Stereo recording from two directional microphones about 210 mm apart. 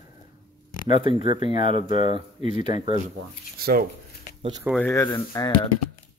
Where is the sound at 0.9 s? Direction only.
25° right (ahead or behind).